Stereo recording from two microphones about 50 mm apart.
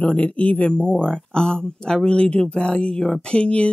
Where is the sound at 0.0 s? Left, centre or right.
Left.